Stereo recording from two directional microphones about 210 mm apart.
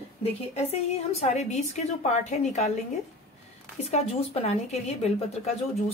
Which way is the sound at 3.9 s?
30° left (ahead or behind).